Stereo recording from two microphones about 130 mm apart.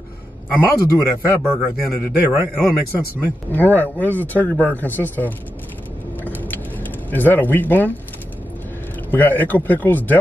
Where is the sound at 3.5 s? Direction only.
15° left (ahead or behind).